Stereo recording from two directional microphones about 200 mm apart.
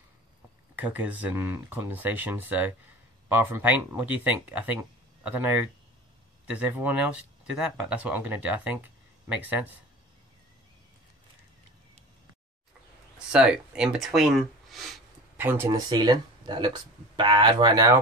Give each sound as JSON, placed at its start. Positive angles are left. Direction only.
{"t": 0.7, "sound": "speech", "side_deg": -5}
{"t": 13.3, "sound": "speech", "side_deg": -5}
{"t": 14.7, "sound": "a sound", "side_deg": 0}
{"t": 15.3, "sound": "speech", "side_deg": -10}